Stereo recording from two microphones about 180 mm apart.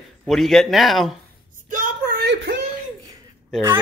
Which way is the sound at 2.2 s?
70° right (ahead or behind).